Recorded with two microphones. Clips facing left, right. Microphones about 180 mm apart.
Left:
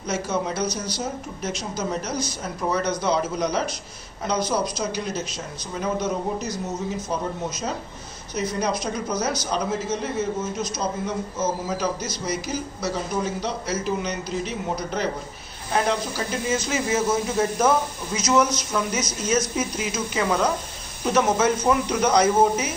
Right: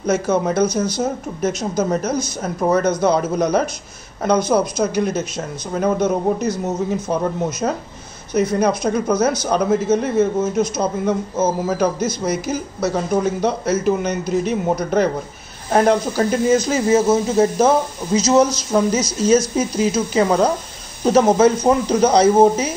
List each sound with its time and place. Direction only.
0.0 s a man's voice: 50° right (ahead or behind)
16.5 s speech: 35° right (ahead or behind)